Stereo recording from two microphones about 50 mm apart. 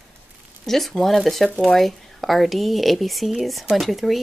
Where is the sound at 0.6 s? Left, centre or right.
Centre.